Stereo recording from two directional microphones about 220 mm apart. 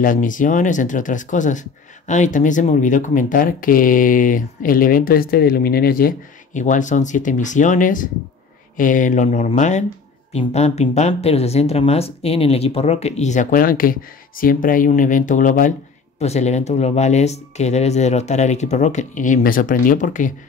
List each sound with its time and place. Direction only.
0.0 s speech: 35° left (ahead or behind)